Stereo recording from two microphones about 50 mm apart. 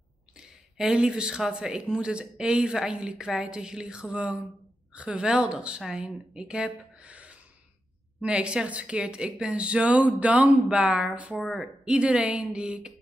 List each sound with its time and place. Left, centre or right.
0.4 s speech: centre; by 10.8 s right
10.8 s speech: centre